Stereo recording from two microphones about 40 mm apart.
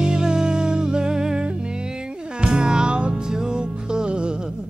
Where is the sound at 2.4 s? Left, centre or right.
Right.